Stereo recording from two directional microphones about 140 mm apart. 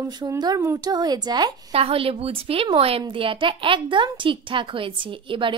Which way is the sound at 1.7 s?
45° right (ahead or behind).